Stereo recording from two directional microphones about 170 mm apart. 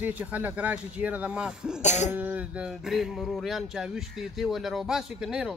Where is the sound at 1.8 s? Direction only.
45° left (ahead or behind).